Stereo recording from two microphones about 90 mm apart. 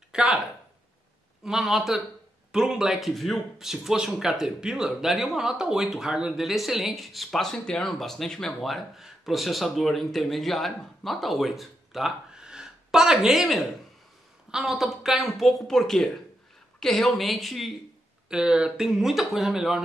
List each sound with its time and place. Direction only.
0.1 s speech: 5° right (ahead or behind)
1.4 s speech: 5° right (ahead or behind)